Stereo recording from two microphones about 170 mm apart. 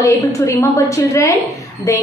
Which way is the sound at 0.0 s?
20° left (ahead or behind).